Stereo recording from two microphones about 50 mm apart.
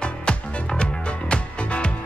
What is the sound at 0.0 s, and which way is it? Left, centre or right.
Music, centre.